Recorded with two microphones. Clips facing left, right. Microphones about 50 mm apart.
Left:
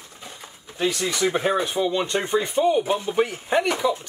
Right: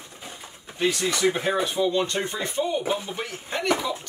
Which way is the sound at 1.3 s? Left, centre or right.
Centre.